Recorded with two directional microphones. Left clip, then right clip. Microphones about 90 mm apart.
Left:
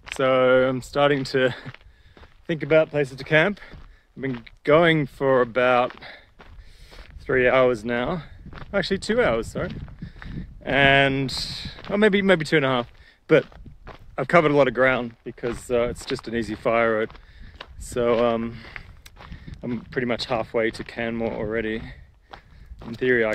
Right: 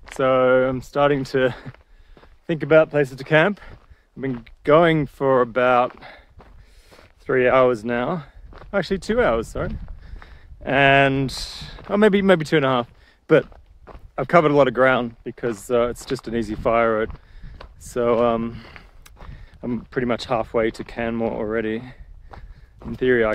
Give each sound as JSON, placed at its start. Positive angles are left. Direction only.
{"t": 0.0, "sound": "speech", "side_deg": -25}
{"t": 2.4, "sound": "speech", "side_deg": -40}
{"t": 2.7, "sound": "speech", "side_deg": -70}
{"t": 3.3, "sound": "speech", "side_deg": -35}
{"t": 4.2, "sound": "speech", "side_deg": -20}
{"t": 15.0, "sound": "speech", "side_deg": -65}
{"t": 15.7, "sound": "speech", "side_deg": -45}
{"t": 18.8, "sound": "a sound", "side_deg": -35}
{"t": 19.9, "sound": "speech", "side_deg": -40}